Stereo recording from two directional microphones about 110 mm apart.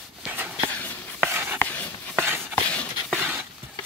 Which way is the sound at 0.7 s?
15° left (ahead or behind).